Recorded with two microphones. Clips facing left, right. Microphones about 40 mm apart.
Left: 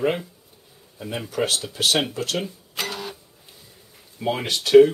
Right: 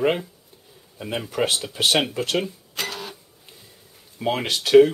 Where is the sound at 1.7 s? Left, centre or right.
Centre.